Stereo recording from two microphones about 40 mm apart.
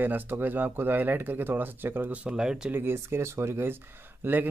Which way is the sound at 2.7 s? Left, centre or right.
Right.